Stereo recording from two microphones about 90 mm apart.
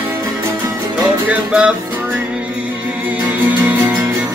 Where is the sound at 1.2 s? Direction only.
10° right (ahead or behind).